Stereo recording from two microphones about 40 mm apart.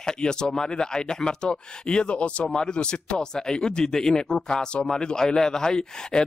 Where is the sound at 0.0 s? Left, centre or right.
Centre.